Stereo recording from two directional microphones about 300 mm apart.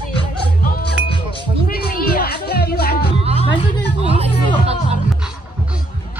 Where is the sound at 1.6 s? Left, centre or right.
Left.